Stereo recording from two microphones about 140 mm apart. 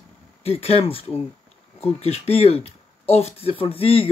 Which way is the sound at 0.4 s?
45° left (ahead or behind).